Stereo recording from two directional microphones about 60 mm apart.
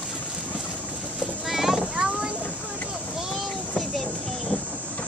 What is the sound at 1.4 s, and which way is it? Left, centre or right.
Clip-clop, centre.